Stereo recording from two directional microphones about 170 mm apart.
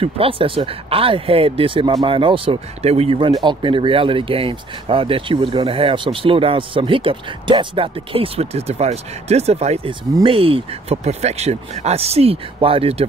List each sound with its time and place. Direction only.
0.0 s speech: 35° right (ahead or behind)